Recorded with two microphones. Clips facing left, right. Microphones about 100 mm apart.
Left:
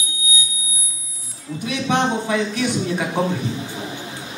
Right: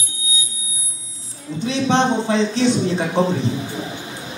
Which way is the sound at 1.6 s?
25° right (ahead or behind).